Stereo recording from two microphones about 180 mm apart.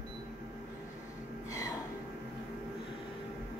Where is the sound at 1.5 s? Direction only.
20° left (ahead or behind).